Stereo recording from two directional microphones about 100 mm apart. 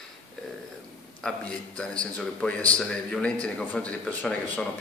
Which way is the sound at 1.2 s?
10° left (ahead or behind).